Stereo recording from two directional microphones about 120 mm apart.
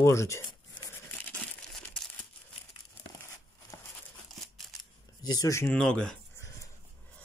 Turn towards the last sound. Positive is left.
turn(degrees=5)  # may be behind; listen again after turning